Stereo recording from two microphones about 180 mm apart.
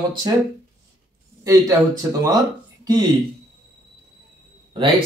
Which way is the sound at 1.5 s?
15° right (ahead or behind).